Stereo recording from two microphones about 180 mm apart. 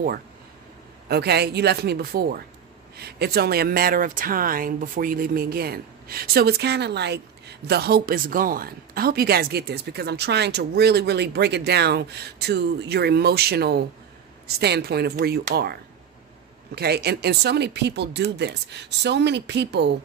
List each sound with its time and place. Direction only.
1.0 s speech: 65° right (ahead or behind)